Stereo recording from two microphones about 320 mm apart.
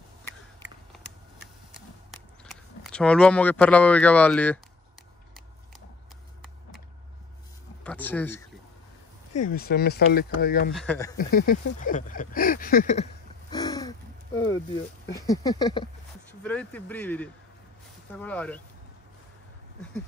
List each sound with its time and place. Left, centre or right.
2.4 s speech: centre
7.8 s a sound: centre
9.5 s speech: left
10.7 s a man's voice: centre
11.1 s speech: left
15.1 s a sound: centre
16.4 s a man's voice: centre